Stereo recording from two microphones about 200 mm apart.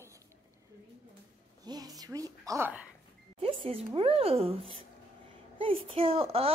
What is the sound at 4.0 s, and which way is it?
Speech, 30° right (ahead or behind).